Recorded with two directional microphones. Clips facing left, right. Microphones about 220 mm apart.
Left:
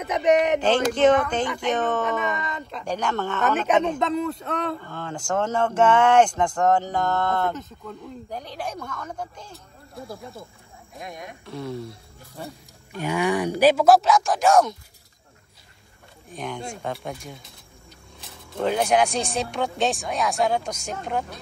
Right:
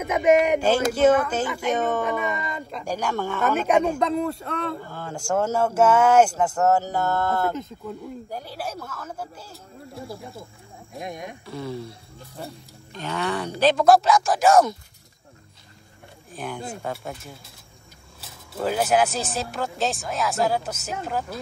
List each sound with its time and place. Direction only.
0.3 s speech: centre (ahead or behind)
11.0 s speech: 25° right (ahead or behind)
11.4 s speech: centre (ahead or behind)
12.9 s speech: 10° left (ahead or behind); by 14.8 s 5° right (ahead or behind)
16.3 s speech: 5° right (ahead or behind)
18.5 s speech: 5° right (ahead or behind)